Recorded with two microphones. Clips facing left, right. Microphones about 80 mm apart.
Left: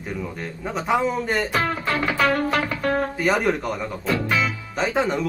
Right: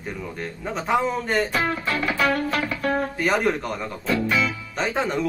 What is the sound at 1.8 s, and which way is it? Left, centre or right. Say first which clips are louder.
Music: left 2 dB; left.